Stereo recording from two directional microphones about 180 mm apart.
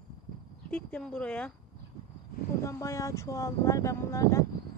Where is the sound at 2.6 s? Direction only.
15° left (ahead or behind).